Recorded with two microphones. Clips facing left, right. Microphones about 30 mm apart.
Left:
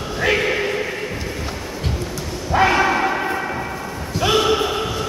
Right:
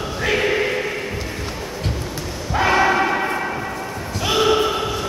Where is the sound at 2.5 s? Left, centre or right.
Centre.